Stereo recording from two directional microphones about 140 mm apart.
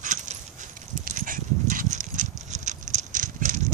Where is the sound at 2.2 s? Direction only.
60° right (ahead or behind).